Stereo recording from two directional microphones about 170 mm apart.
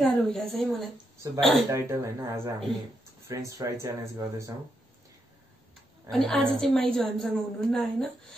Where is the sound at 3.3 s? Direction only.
20° right (ahead or behind).